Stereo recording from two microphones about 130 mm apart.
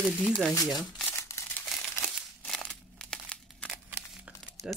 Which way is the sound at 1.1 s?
20° left (ahead or behind).